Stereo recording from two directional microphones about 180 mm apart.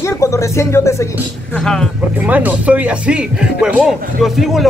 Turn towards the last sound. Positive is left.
turn(degrees=0)  # may be behind; listen again after turning